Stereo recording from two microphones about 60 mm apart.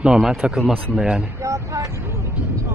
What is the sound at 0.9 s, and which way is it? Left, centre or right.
Speech, centre.